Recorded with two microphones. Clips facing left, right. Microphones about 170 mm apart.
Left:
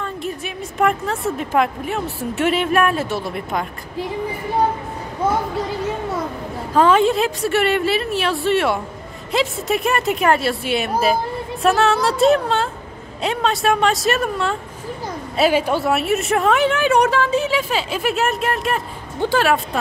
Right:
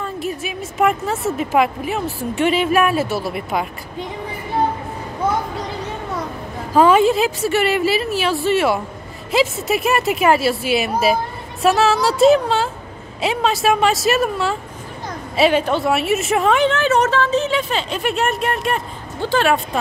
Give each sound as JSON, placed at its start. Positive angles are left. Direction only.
{"t": 0.0, "sound": "a woman's voice", "side_deg": -5}
{"t": 6.7, "sound": "a woman's voice", "side_deg": -10}
{"t": 15.9, "sound": "a woman's voice", "side_deg": 0}